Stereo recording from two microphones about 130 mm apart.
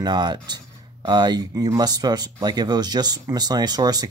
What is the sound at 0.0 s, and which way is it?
Speech, 35° right (ahead or behind).